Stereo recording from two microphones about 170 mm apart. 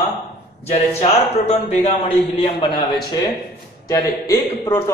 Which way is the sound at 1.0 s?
40° left (ahead or behind).